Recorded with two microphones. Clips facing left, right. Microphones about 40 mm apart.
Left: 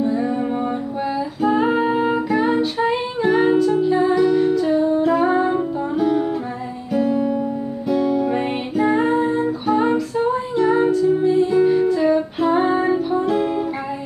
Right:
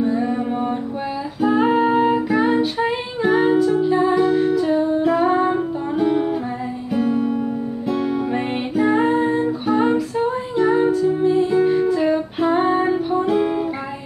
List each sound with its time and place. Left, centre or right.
0.0 s music: centre
4.2 s humming: centre
4.6 s humming: centre
5.9 s music: centre